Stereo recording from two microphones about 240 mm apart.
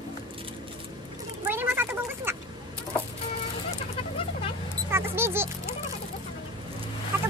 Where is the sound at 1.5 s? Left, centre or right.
Centre.